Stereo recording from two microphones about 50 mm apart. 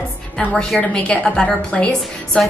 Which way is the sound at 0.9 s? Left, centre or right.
Centre.